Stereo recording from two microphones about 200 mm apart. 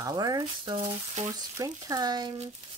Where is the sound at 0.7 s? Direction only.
30° right (ahead or behind).